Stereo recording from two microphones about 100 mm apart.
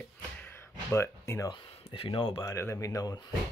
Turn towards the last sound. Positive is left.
turn(degrees=40)  # may be behind; listen again after turning